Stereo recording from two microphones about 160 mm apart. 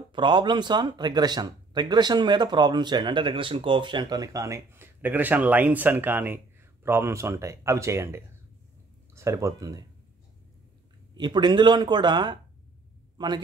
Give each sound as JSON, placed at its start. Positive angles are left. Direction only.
{"t": 0.1, "sound": "speech", "side_deg": -30}
{"t": 11.1, "sound": "speech", "side_deg": -25}